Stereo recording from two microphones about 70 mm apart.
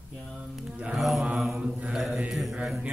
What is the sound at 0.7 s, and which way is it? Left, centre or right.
Mantra, centre.